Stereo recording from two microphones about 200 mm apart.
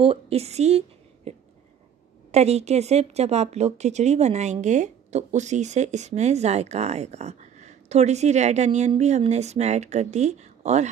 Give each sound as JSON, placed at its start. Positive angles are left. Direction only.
{"t": 0.0, "sound": "speech", "side_deg": -30}
{"t": 2.3, "sound": "a woman's voice", "side_deg": -35}